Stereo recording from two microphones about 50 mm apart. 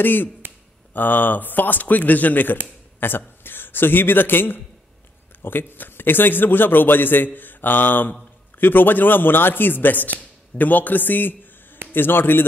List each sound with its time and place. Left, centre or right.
0.0 s a man's voice: left